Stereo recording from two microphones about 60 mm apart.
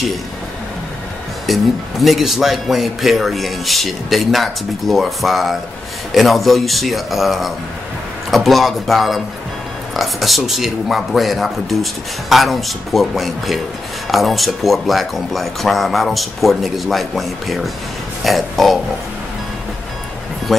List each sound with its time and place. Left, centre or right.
1.5 s speech: centre